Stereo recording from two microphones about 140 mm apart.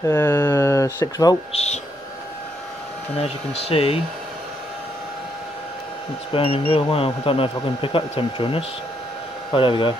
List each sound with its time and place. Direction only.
0.1 s speech: 15° left (ahead or behind)
1.5 s speech: 50° left (ahead or behind)
3.2 s speech: 45° left (ahead or behind)
6.3 s speech: 40° left (ahead or behind)